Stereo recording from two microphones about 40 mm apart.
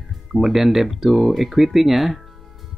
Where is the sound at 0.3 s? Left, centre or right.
Centre.